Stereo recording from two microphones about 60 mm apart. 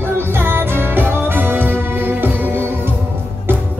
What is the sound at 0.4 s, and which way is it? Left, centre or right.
Music, right.